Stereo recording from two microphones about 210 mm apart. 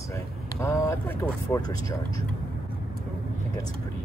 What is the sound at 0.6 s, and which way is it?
Speech, 10° left (ahead or behind).